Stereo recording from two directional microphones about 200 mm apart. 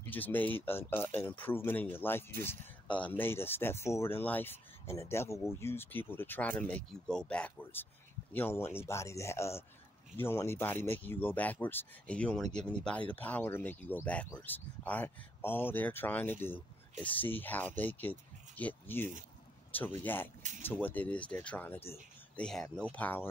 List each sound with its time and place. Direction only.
0.0 s speech: 10° left (ahead or behind)